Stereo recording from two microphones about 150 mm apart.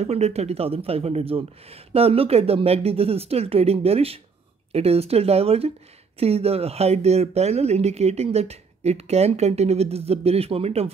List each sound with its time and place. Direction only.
0.0 s speech: 45° right (ahead or behind)